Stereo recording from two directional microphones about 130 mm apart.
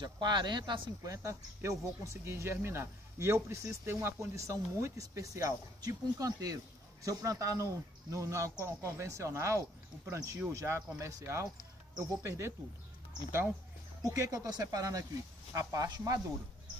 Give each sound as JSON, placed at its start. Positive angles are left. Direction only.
{"t": 0.0, "sound": "speech", "side_deg": -35}
{"t": 14.1, "sound": "speech", "side_deg": -25}